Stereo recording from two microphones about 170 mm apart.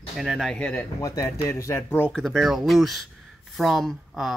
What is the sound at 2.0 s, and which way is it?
Speech, centre (ahead or behind).